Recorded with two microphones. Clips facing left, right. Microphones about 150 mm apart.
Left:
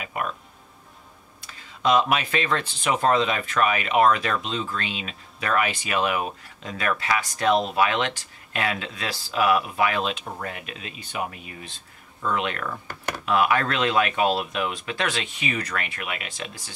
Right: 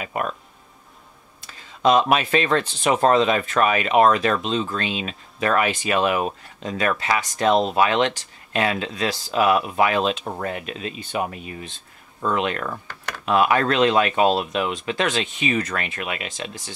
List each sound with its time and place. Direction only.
0.0 s speech: 40° right (ahead or behind)
1.8 s speech: 40° right (ahead or behind)
4.5 s speech: 25° right (ahead or behind)